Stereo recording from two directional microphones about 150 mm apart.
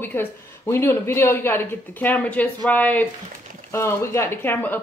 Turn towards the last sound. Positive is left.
turn(degrees=15)  # may be behind; listen again after turning